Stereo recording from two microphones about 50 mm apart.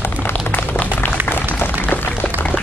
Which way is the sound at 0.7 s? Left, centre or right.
Left.